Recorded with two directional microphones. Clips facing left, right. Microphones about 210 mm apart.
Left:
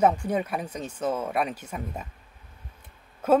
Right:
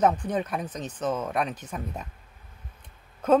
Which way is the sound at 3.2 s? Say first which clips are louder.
Even; 5° left (ahead or behind).